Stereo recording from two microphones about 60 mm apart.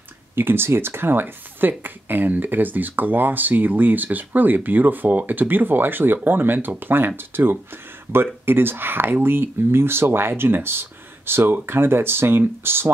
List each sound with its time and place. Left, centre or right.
0.4 s speech: right